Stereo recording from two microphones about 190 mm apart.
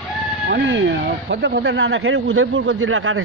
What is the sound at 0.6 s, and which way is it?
Speech, 70° right (ahead or behind).